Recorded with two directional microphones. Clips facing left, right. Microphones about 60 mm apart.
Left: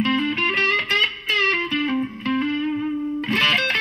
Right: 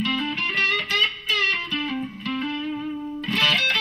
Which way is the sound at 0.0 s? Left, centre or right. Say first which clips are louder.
Left 4 dB; left.